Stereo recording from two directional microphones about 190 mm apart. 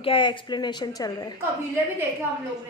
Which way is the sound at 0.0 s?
25° left (ahead or behind).